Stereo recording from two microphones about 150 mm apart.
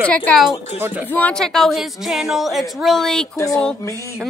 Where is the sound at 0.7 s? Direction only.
15° right (ahead or behind).